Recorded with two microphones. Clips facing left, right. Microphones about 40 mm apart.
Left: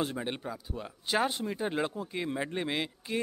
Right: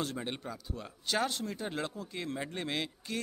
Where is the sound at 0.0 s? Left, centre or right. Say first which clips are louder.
Left 3 dB; centre.